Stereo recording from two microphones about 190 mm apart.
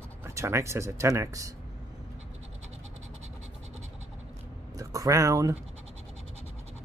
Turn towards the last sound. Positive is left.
turn(degrees=-15)  # may be behind; listen again after turning